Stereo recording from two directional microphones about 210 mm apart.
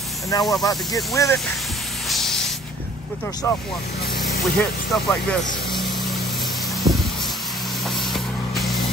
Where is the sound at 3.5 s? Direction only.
15° left (ahead or behind).